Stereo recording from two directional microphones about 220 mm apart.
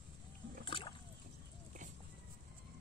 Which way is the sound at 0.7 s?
20° left (ahead or behind).